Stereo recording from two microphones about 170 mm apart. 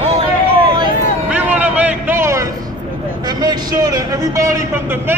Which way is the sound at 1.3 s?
10° right (ahead or behind).